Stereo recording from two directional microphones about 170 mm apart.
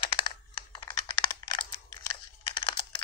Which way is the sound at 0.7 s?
25° left (ahead or behind).